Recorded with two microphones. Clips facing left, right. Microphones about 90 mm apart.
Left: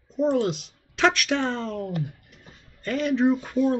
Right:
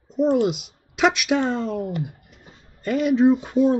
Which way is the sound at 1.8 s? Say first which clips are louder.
Right 2 dB; 25° right (ahead or behind).